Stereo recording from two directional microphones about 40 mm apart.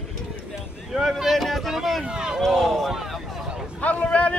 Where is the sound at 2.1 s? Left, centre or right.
Centre.